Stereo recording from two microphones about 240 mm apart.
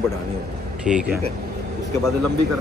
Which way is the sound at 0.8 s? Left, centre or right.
Centre.